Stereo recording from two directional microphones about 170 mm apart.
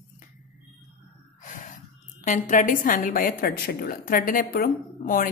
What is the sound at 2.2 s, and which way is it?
A woman's voice, 50° left (ahead or behind).